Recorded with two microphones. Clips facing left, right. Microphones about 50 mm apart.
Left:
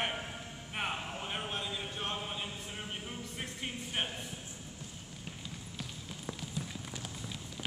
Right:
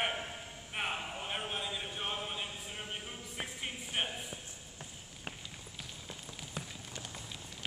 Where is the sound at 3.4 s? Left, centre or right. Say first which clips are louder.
Right 1 dB; centre.